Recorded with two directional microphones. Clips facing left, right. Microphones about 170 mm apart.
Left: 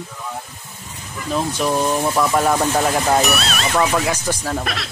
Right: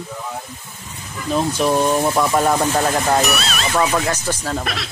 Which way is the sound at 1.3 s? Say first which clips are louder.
Right 2 dB; 5° right (ahead or behind).